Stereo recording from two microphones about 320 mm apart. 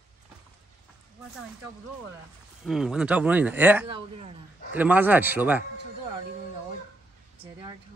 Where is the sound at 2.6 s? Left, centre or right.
Centre.